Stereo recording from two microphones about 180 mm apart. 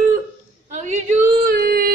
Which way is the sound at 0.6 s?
40° right (ahead or behind).